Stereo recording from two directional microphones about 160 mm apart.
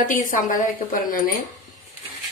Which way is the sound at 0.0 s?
55° left (ahead or behind).